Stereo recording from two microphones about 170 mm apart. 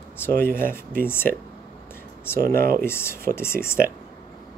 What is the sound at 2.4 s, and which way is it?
Speech, 60° right (ahead or behind).